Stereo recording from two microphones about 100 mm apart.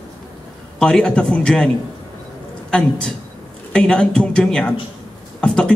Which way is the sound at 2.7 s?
10° left (ahead or behind).